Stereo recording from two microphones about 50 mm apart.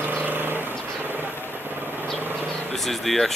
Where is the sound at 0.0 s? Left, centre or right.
Right.